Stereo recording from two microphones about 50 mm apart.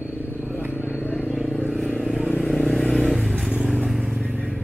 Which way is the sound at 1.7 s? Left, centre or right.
Centre.